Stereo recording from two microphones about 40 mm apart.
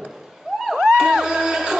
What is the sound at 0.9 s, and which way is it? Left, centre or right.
Music, centre.